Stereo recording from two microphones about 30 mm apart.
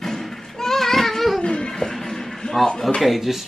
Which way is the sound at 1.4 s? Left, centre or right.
Left.